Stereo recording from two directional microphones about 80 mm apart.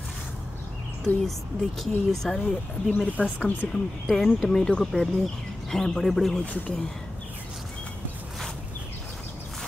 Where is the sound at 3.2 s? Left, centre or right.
Centre.